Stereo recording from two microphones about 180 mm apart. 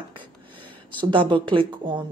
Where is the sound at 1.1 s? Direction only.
30° right (ahead or behind).